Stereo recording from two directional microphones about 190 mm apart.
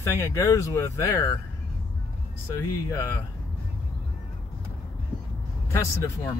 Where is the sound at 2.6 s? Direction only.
15° left (ahead or behind).